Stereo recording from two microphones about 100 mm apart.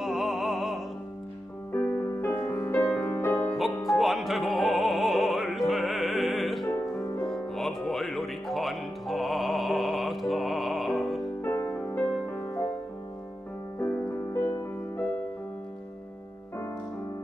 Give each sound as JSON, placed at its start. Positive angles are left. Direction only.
{"t": 0.0, "sound": "opera", "side_deg": -5}
{"t": 1.7, "sound": "music", "side_deg": 15}
{"t": 3.5, "sound": "music", "side_deg": 0}
{"t": 11.4, "sound": "music", "side_deg": 25}
{"t": 13.7, "sound": "music", "side_deg": 20}